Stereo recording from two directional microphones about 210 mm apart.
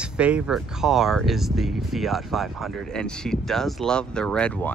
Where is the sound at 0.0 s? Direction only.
5° right (ahead or behind).